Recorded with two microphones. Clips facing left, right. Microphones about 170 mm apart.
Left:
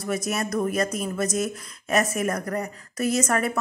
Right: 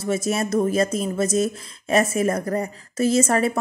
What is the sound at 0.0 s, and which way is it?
Speech, 25° right (ahead or behind).